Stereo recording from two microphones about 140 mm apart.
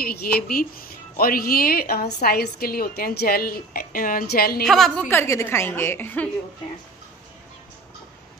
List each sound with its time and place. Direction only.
0.0 s speech: 90° left
4.6 s a woman's voice: centre (ahead or behind)
5.0 s a woman's voice: 20° left (ahead or behind)